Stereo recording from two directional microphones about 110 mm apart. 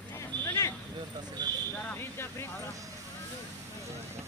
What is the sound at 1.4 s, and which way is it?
Speech, 40° right (ahead or behind).